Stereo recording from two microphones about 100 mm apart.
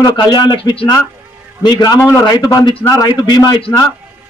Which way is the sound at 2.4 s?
45° left (ahead or behind).